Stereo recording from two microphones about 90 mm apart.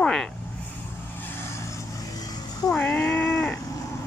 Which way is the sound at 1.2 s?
30° left (ahead or behind).